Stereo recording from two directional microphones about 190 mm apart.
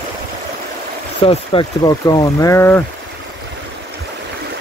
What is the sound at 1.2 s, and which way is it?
Speech, 30° left (ahead or behind).